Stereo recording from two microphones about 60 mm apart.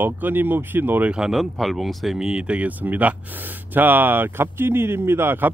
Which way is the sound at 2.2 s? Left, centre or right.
Centre.